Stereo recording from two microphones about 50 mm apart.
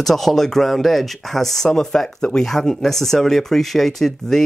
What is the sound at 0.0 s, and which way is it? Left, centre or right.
Speech, centre.